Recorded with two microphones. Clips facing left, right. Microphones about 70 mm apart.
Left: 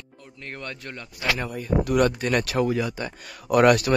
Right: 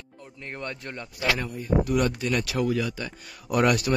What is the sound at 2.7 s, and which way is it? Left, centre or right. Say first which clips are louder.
Speech: left 2 dB; left.